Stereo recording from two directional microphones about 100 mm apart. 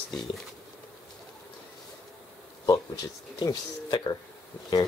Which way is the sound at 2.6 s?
45° left (ahead or behind).